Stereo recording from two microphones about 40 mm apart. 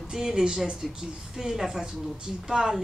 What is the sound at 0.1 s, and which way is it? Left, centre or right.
Speech, centre.